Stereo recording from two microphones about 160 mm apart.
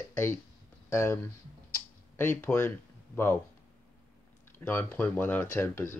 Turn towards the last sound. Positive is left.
turn(degrees=15)  # may be behind; listen again after turning